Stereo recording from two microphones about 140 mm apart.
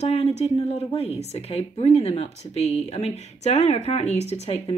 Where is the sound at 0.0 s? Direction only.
50° left (ahead or behind).